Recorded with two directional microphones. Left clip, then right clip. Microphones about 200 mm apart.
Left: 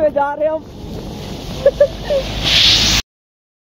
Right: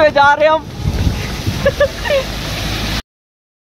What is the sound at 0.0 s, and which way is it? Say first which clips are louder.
Speech: right 6 dB; 20° right (ahead or behind).